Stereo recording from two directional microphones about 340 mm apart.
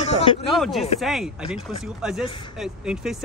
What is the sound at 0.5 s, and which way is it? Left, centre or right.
Speech, centre.